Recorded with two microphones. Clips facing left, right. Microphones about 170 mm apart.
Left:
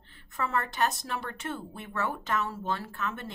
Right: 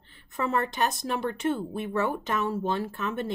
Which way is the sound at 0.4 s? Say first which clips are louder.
Right 3 dB; 20° right (ahead or behind).